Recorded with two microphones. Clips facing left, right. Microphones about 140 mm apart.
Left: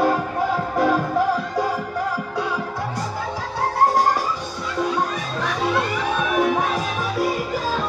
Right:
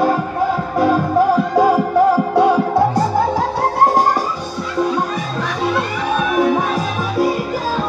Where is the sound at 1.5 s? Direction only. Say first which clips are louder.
Right 10 dB; 65° right (ahead or behind).